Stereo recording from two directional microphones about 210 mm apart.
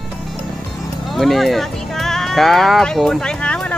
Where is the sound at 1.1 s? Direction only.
Centre (ahead or behind).